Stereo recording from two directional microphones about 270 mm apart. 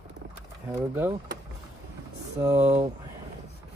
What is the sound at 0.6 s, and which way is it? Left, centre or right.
Speech, centre.